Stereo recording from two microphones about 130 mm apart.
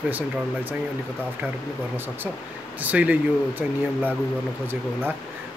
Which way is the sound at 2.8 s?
10° right (ahead or behind).